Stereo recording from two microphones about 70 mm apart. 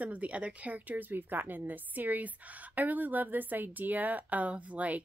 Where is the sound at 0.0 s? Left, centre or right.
Right.